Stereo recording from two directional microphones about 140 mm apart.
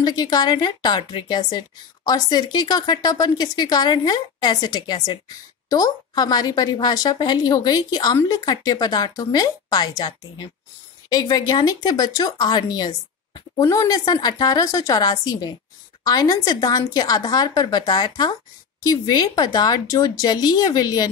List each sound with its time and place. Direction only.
0.0 s a woman's voice: 30° left (ahead or behind)